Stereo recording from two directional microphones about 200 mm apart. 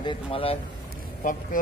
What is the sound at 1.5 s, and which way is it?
Speech, 40° left (ahead or behind).